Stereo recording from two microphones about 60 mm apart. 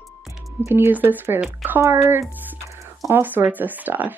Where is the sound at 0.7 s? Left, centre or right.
Right.